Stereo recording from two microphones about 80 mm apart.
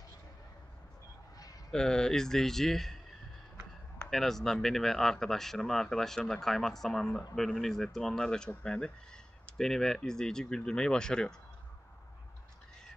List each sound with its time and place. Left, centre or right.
1.7 s a man's voice: centre
4.1 s speech: centre